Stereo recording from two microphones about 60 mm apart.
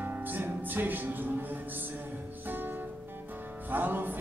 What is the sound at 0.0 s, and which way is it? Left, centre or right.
Music, right.